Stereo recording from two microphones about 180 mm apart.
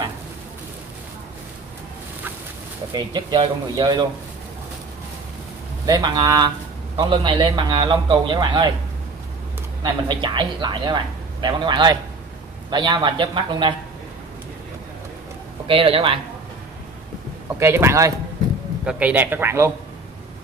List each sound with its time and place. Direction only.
2.9 s a man's voice: 25° right (ahead or behind)
5.9 s a man's voice: 25° right (ahead or behind)
9.8 s a man's voice: 25° right (ahead or behind)
15.6 s speech: 30° right (ahead or behind)
17.6 s a man's voice: 15° right (ahead or behind)